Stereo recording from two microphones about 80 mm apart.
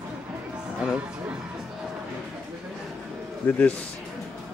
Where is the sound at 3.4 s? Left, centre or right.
Centre.